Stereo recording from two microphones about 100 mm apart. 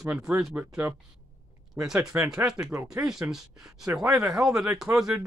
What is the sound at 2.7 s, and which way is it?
Speech, 30° right (ahead or behind).